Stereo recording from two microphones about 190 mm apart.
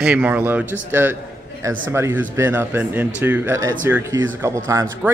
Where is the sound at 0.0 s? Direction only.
5° right (ahead or behind).